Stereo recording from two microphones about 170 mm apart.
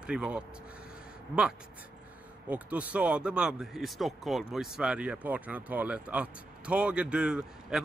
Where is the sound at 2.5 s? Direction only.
10° right (ahead or behind).